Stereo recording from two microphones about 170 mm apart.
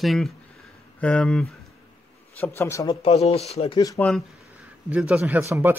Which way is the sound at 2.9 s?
35° left (ahead or behind).